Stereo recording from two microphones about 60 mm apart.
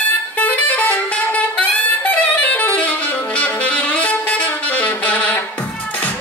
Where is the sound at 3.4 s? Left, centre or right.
Left.